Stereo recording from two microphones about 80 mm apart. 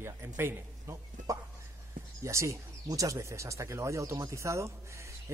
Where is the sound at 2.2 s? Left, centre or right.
Right.